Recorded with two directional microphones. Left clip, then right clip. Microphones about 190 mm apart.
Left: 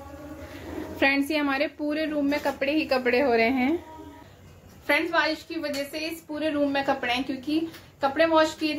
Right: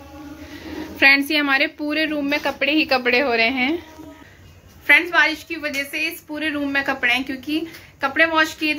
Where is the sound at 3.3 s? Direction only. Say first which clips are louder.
Right 4 dB; 10° left (ahead or behind).